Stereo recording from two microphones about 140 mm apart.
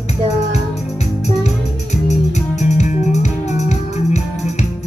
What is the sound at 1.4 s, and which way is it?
Music, 55° left (ahead or behind).